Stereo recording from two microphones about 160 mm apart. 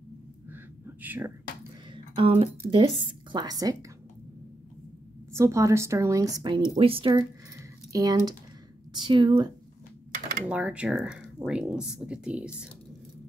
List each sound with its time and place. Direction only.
0.5 s a sound: 10° right (ahead or behind)
2.1 s speech: 35° right (ahead or behind)
5.3 s a woman's voice: 20° right (ahead or behind)
6.7 s a woman's voice: 35° right (ahead or behind)
10.5 s speech: 10° right (ahead or behind)